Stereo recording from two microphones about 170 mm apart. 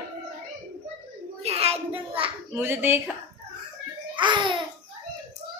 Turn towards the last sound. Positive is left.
turn(degrees=-25)  # may be behind; listen again after turning